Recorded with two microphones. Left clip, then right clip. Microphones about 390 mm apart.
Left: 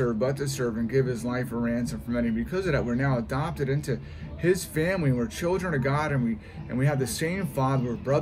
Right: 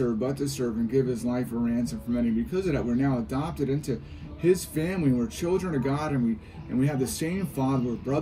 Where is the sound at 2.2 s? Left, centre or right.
Left.